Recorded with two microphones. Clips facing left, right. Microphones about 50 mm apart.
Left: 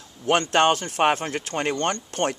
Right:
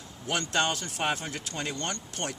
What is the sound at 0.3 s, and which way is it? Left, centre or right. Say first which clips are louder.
Speech: left 9 dB; left.